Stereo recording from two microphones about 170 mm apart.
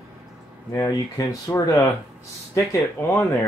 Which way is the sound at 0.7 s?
20° left (ahead or behind).